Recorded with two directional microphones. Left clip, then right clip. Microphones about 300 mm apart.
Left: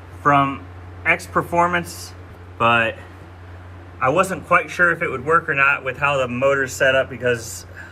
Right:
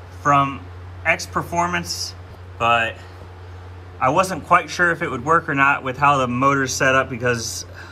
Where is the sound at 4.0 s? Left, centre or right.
Centre.